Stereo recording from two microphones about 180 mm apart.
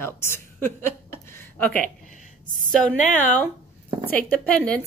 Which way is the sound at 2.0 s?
45° left (ahead or behind).